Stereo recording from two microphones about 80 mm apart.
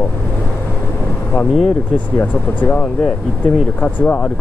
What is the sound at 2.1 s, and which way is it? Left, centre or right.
Speech, centre.